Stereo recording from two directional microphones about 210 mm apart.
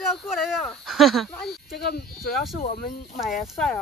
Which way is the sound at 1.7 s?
45° left (ahead or behind).